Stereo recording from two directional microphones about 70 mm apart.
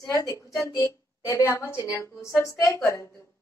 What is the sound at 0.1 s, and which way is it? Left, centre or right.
Speech, left.